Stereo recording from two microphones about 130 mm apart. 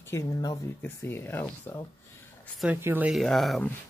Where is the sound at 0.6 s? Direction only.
15° left (ahead or behind).